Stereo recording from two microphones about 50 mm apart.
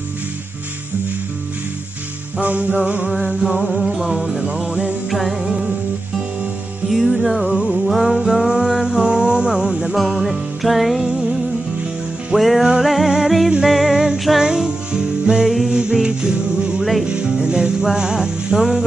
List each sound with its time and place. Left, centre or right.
2.4 s music: right
3.4 s music: centre
4.5 s music: right
5.1 s music: centre
6.9 s music: centre
7.5 s music: centre
7.8 s music: centre
9.9 s music: centre
12.4 s music: centre
15.4 s music: centre
15.7 s music: centre